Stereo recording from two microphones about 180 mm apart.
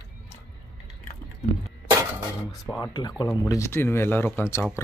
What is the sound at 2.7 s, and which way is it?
Speech, 20° left (ahead or behind).